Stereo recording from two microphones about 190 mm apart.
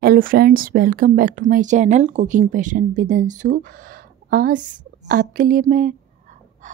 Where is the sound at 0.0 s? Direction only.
50° right (ahead or behind).